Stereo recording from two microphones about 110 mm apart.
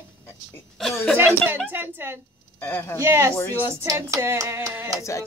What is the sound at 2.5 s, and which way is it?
Speech, 20° left (ahead or behind).